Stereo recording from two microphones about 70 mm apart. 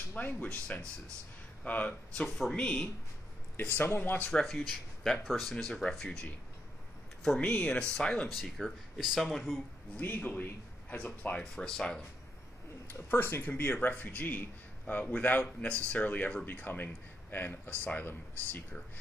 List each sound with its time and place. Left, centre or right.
0.1 s a man's voice: left
2.2 s speech: centre
2.5 s speech: centre
3.5 s a man's voice: left
4.3 s speech: centre
8.3 s speech: centre
9.9 s a man's voice: left; by 12.0 s centre
12.8 s a man's voice: left